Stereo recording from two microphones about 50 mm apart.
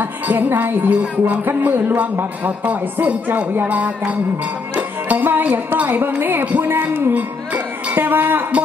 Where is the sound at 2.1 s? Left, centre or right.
Right.